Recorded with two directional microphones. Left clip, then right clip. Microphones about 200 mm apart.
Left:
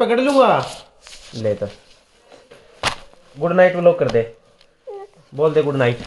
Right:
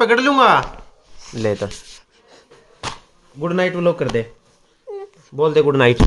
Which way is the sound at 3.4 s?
5° right (ahead or behind).